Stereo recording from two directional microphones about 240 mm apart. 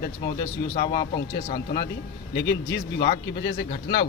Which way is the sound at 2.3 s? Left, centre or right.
Left.